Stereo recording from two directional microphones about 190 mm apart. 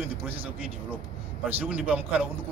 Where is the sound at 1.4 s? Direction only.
10° right (ahead or behind).